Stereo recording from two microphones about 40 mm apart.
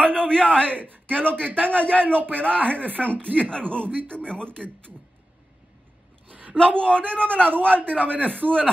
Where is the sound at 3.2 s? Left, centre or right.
Right.